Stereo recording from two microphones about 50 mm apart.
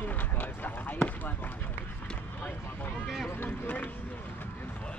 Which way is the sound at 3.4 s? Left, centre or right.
Left.